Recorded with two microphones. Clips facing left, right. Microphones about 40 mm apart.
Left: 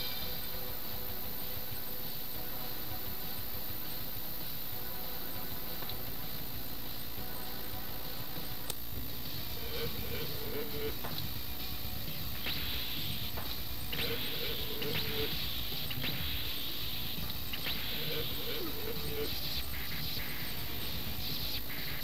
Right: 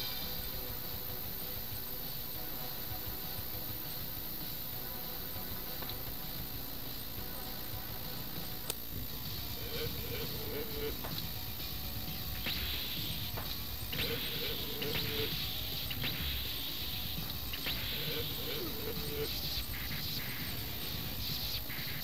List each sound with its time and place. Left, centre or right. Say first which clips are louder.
9.8 s vehicle: left 1 dB; centre
13.9 s music: left 1 dB; centre
17.6 s vehicle: even; centre
19.9 s a sound: even; centre